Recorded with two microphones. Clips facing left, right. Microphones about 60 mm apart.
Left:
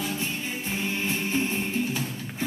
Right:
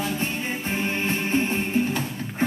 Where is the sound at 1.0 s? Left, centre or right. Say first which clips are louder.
Right 4 dB; right.